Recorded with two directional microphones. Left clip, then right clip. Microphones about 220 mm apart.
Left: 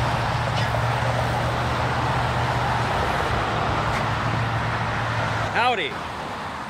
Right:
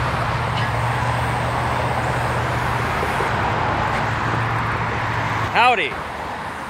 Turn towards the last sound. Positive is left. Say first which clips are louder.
# right 6 dB
turn(degrees=-10)  # may be behind; listen again after turning